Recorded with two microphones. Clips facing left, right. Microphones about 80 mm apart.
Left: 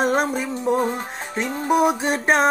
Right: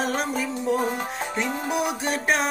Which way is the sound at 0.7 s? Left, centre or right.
Left.